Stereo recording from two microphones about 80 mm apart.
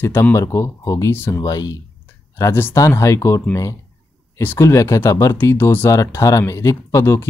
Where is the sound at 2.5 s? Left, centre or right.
Left.